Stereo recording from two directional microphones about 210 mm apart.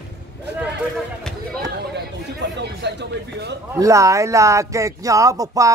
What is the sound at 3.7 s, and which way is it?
Speech, 15° right (ahead or behind).